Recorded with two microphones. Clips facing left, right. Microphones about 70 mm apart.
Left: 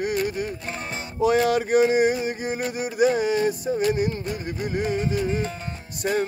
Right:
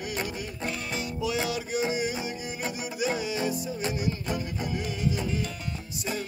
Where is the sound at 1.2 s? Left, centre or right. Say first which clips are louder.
Left 12 dB; left.